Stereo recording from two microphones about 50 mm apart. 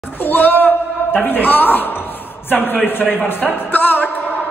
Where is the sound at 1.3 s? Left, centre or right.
Left.